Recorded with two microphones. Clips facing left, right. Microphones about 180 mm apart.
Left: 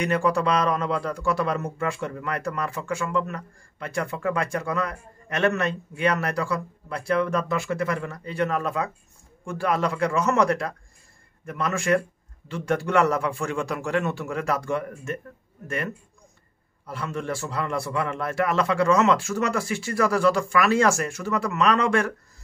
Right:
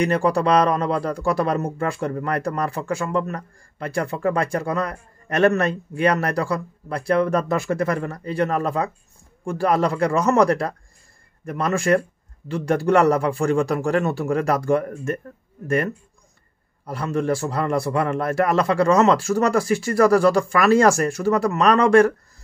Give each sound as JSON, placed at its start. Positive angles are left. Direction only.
{"t": 0.0, "sound": "speech", "side_deg": -35}
{"t": 16.8, "sound": "speech", "side_deg": -40}